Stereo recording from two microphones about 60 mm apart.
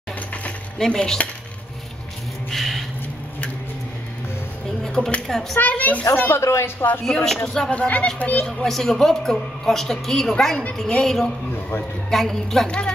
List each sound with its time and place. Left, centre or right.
0.7 s a woman's voice: centre
2.5 s a sound: centre
4.8 s a sound: centre
5.3 s a woman's voice: centre
5.6 s a child's voice: left
6.1 s speech: left
7.2 s a woman's voice: centre
7.7 s a child's voice: left
8.5 s a woman's voice: centre